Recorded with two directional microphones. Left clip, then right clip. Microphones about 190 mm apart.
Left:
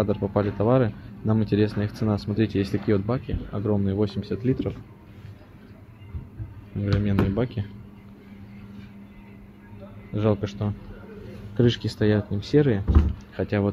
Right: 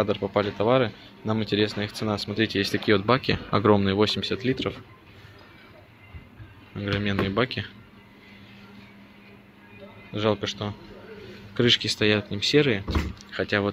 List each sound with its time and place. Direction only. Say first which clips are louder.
0.3 s speech: even; 5° left (ahead or behind)
3.1 s speech: right 8 dB; 20° right (ahead or behind)
3.8 s speech: right 4 dB; 15° right (ahead or behind)
6.9 s speech: even; 5° right (ahead or behind)
10.1 s speech: even; 5° left (ahead or behind)